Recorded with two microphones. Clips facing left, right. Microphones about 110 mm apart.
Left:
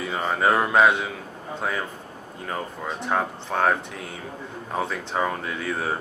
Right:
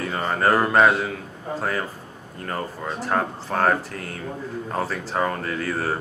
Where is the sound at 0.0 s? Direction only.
5° left (ahead or behind).